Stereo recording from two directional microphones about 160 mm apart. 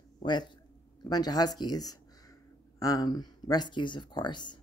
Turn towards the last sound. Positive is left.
turn(degrees=30)  # may be behind; listen again after turning